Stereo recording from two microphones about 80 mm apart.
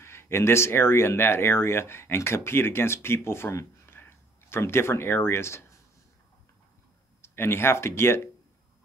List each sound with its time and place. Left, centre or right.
0.0 s speech: left
7.2 s speech: left